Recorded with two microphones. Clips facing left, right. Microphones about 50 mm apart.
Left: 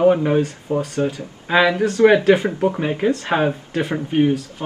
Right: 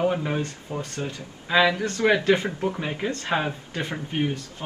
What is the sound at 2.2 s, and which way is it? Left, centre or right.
Speech, centre.